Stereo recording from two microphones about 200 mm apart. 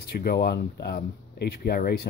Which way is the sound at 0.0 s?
50° left (ahead or behind).